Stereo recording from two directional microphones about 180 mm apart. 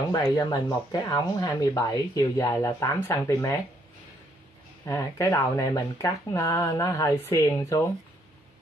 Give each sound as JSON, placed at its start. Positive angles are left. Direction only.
{"t": 0.1, "sound": "speech", "side_deg": 20}
{"t": 4.8, "sound": "speech", "side_deg": 15}